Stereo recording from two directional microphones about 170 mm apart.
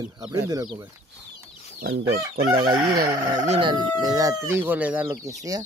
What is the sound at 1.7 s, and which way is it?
Speech, 75° right (ahead or behind).